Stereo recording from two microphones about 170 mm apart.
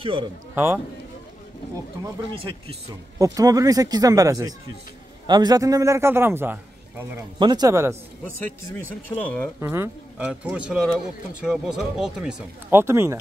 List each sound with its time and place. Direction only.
0.0 s speech: 30° right (ahead or behind)
2.3 s speech: 35° right (ahead or behind)
3.3 s a man's voice: 20° right (ahead or behind)
7.3 s speech: 25° right (ahead or behind)
8.7 s speech: 10° left (ahead or behind)
9.6 s a man's voice: 15° right (ahead or behind)